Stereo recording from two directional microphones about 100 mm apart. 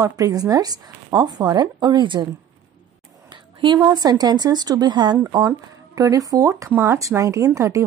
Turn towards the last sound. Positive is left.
turn(degrees=-35)  # may be behind; listen again after turning